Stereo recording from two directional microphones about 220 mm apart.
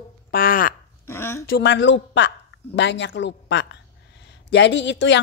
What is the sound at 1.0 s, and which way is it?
Speech, 10° left (ahead or behind).